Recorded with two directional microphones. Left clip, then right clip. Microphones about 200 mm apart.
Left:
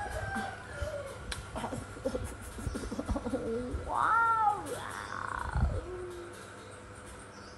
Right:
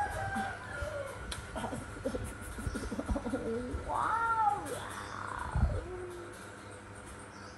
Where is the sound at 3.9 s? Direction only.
5° left (ahead or behind).